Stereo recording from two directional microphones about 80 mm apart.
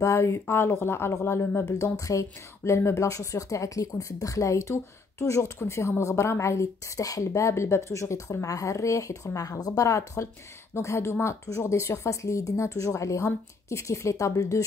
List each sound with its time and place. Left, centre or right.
0.0 s a woman's voice: left
1.7 s a woman's voice: left